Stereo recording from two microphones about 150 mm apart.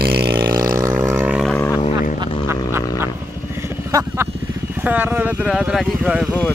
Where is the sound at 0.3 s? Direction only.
25° right (ahead or behind).